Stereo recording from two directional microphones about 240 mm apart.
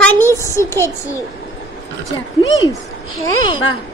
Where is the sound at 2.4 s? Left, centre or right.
Left.